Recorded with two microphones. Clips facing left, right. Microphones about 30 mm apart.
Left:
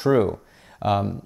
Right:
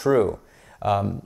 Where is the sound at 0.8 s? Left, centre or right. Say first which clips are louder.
Even; left.